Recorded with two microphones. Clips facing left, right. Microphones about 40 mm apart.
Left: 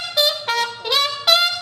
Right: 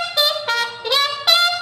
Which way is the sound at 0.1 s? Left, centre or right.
Centre.